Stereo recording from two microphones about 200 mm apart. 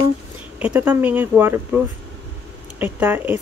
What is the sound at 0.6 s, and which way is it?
Speech, 10° right (ahead or behind).